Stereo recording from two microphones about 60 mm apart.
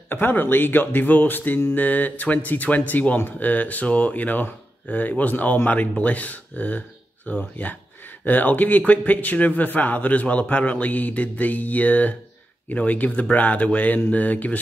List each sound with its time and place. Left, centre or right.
0.1 s speech: left